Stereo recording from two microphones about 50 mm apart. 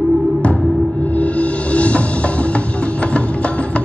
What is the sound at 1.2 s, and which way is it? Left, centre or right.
Music, left.